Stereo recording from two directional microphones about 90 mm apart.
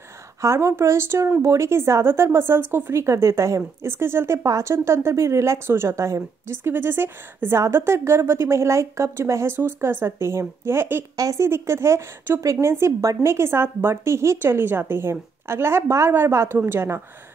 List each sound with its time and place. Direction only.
0.4 s a woman's voice: 30° right (ahead or behind)
11.1 s speech: 40° right (ahead or behind)
11.4 s a woman's voice: 30° right (ahead or behind)